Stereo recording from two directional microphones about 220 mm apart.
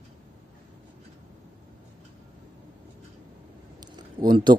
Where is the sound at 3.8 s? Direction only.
20° right (ahead or behind).